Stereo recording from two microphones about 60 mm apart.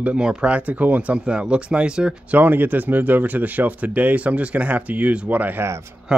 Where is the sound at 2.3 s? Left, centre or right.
Right.